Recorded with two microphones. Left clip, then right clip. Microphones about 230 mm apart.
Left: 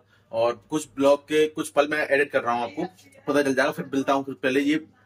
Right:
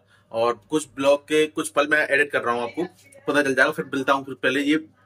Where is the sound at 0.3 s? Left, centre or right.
Centre.